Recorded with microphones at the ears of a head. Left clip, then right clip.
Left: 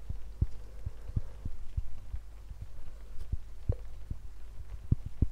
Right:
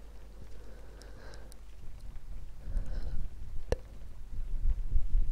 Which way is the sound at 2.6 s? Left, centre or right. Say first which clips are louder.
Right 13 dB; right.